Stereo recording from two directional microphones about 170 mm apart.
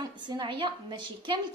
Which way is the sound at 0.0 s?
25° right (ahead or behind).